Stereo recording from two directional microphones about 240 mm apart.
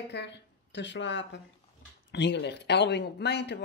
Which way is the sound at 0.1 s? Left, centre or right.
Left.